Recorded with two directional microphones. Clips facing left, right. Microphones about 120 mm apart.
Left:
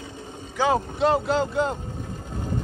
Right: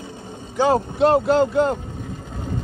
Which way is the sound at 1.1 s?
50° right (ahead or behind).